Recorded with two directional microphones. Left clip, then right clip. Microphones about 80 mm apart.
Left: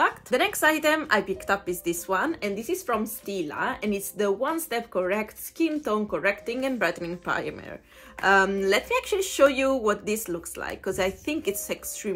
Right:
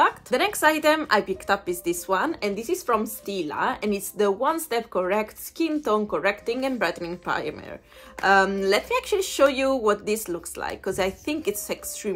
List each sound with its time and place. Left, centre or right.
0.0 s speech: right